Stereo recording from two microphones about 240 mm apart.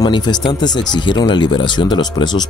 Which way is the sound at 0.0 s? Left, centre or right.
Centre.